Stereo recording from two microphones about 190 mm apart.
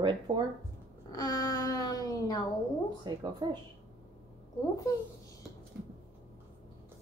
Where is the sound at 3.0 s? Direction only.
25° right (ahead or behind).